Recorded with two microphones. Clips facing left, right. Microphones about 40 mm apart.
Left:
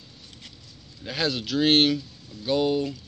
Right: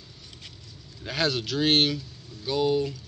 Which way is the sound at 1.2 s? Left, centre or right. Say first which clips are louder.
Left 2 dB; left.